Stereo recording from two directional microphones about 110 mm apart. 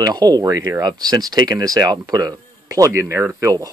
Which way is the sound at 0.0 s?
35° right (ahead or behind).